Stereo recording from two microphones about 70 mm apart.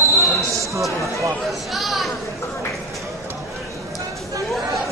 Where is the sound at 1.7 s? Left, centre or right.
Centre.